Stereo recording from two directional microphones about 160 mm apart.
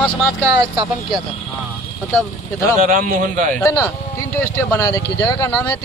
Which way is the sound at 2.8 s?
55° right (ahead or behind).